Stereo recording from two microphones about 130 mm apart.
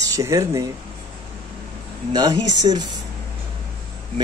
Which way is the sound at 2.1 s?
35° right (ahead or behind).